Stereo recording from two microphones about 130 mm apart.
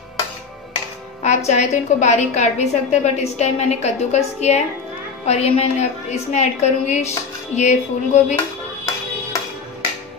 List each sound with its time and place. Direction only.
1.2 s a woman's voice: 65° left (ahead or behind)